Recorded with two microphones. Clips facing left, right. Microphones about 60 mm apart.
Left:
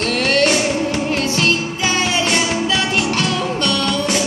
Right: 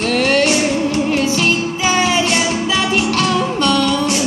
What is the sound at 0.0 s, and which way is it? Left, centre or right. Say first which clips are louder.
Music: right 2 dB; centre.